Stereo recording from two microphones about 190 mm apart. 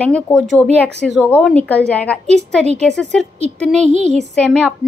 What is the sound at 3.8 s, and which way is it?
Speech, 35° right (ahead or behind).